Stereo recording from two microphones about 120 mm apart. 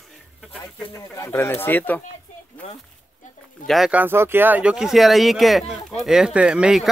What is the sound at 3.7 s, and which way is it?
Speech, centre (ahead or behind).